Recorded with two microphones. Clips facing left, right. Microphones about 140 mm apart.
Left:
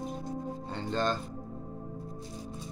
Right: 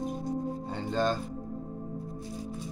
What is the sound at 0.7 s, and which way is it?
Music, 10° right (ahead or behind).